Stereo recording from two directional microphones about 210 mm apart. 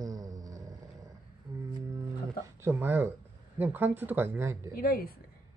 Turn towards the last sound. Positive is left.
turn(degrees=45)  # may be behind; listen again after turning